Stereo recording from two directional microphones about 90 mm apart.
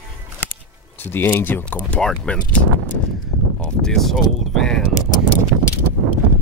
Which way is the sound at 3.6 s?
5° left (ahead or behind).